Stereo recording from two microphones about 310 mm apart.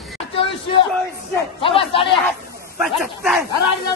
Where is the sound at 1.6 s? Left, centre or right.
Centre.